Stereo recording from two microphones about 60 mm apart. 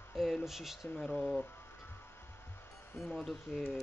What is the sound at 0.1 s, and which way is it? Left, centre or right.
Speech, centre.